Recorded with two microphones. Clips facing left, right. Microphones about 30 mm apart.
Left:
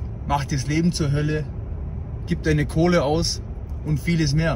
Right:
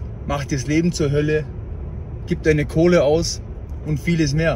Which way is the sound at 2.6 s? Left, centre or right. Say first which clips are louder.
Right 3 dB; centre.